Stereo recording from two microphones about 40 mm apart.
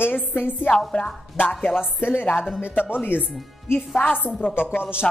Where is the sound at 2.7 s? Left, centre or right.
Left.